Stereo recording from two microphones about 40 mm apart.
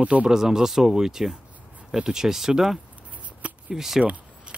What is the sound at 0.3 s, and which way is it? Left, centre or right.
Speech, centre.